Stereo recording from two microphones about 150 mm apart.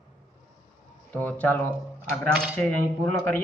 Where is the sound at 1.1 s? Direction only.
10° left (ahead or behind).